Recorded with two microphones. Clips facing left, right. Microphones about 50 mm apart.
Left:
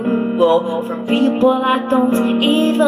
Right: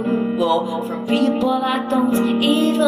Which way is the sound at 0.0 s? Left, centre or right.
Left.